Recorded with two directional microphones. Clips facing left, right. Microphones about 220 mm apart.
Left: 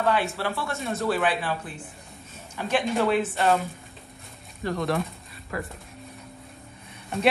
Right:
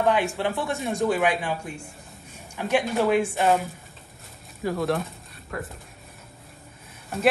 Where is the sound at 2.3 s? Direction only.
15° right (ahead or behind).